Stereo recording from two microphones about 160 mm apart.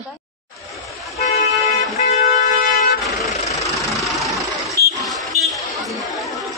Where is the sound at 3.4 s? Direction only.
20° left (ahead or behind).